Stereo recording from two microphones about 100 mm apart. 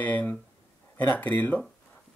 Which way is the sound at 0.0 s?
15° left (ahead or behind).